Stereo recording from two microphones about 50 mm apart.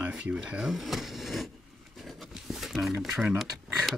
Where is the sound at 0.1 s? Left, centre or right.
Centre.